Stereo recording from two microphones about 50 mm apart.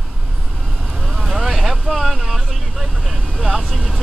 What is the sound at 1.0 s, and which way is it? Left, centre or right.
Speech, centre.